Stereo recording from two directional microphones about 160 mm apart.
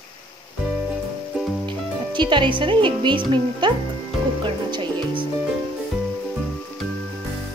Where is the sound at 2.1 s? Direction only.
30° right (ahead or behind).